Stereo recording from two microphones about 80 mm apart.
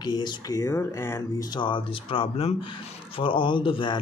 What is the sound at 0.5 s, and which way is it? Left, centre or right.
Speech, left.